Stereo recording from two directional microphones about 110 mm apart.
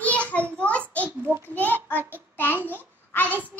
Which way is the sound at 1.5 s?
15° left (ahead or behind).